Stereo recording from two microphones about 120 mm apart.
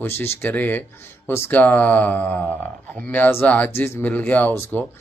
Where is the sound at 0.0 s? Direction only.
20° left (ahead or behind).